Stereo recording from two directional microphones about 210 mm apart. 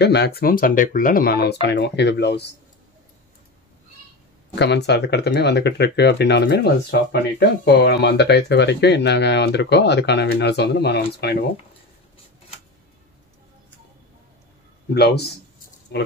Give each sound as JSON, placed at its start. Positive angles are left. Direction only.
{"t": 0.0, "sound": "speech", "side_deg": 50}
{"t": 4.6, "sound": "speech", "side_deg": 55}
{"t": 15.0, "sound": "speech", "side_deg": 50}